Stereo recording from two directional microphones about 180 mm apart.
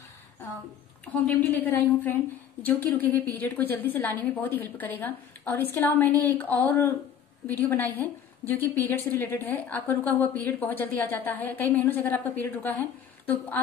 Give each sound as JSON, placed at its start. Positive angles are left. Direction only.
{"t": 1.2, "sound": "a woman's voice", "side_deg": 10}